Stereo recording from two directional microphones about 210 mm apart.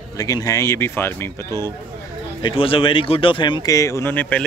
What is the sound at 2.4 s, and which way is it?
A man's voice, 25° left (ahead or behind).